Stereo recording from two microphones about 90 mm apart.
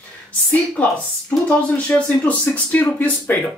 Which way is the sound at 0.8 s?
15° left (ahead or behind).